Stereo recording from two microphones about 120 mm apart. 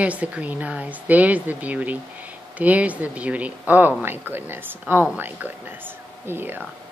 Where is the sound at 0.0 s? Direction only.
10° right (ahead or behind).